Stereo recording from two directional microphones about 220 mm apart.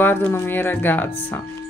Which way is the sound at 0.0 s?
10° left (ahead or behind).